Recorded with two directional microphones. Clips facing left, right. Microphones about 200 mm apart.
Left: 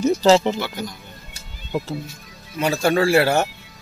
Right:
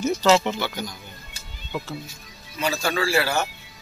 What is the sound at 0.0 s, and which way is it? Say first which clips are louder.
Speech: left 4 dB; 35° left (ahead or behind).